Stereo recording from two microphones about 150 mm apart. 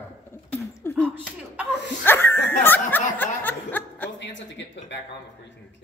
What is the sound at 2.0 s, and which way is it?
Laughter, 15° left (ahead or behind).